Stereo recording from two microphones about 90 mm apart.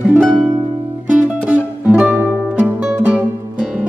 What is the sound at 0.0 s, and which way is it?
Music, 15° right (ahead or behind).